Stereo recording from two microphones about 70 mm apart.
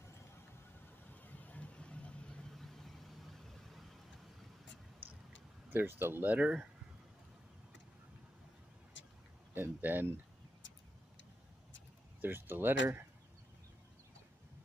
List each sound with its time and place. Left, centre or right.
1.2 s vehicle: left
2.5 s vehicle: centre
5.0 s a sound: right
5.7 s speech: right; by 6.7 s centre
9.5 s speech: right
12.2 s speech: right